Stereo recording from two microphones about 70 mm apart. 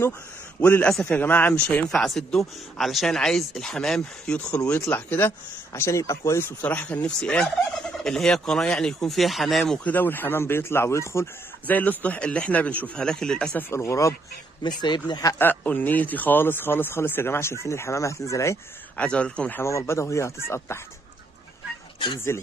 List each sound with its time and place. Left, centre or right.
1.0 s speech: left
1.9 s speech: centre
4.6 s speech: left
5.7 s speech: left
6.6 s speech: left; by 9.8 s centre
9.8 s speech: left
11.6 s speech: left
13.6 s speech: left
14.6 s speech: left
15.3 s speech: left
18.9 s speech: centre
19.6 s speech: left
22.3 s speech: left